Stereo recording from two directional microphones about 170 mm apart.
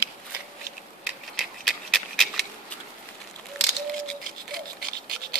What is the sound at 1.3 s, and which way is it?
Dog, centre (ahead or behind).